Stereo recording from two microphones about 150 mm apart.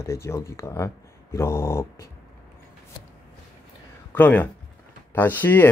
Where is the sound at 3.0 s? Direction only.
35° left (ahead or behind).